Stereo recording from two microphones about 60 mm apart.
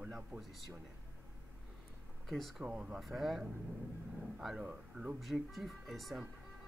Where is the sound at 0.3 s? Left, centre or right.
Right.